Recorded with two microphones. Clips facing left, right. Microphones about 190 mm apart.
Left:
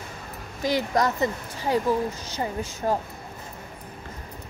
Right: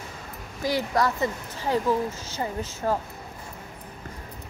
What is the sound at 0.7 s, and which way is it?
Speech, 20° left (ahead or behind).